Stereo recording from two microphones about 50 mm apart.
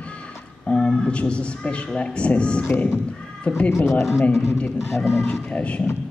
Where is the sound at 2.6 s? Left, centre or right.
Left.